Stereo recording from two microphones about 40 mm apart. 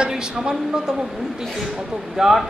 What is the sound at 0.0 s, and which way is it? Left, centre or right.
Speech, centre.